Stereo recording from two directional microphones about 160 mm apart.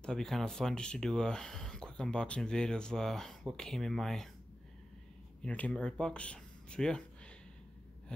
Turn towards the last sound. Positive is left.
turn(degrees=5)  # may be behind; listen again after turning